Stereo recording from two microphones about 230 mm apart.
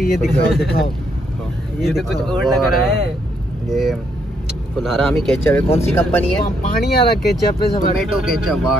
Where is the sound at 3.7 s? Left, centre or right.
Centre.